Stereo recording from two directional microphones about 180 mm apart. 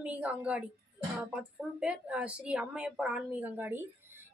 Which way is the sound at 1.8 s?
5° right (ahead or behind).